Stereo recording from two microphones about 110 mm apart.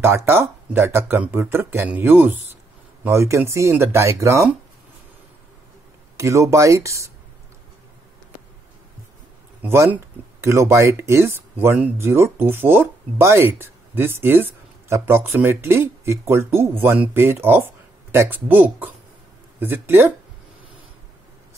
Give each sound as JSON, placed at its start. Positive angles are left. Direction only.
{"t": 0.0, "sound": "speech", "side_deg": -20}
{"t": 6.1, "sound": "speech", "side_deg": -25}
{"t": 9.6, "sound": "speech", "side_deg": -20}